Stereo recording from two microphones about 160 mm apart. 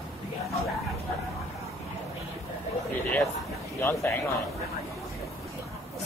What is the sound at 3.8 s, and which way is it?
Speech, 15° left (ahead or behind).